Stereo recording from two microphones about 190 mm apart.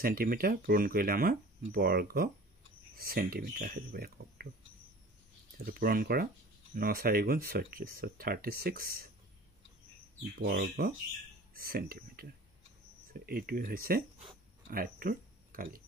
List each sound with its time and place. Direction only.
0.0 s speech: 50° right (ahead or behind)
5.7 s speech: 50° right (ahead or behind)
10.4 s speech: 50° right (ahead or behind)